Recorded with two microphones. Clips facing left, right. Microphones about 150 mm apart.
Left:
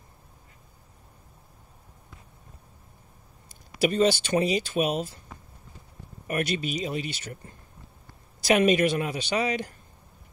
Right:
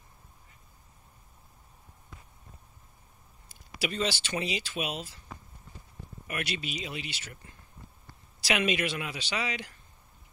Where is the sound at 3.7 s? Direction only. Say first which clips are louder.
Left 9 dB; 45° left (ahead or behind).